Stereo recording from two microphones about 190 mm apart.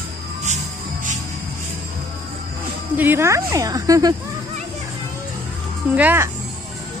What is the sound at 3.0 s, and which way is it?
Speech, 10° right (ahead or behind).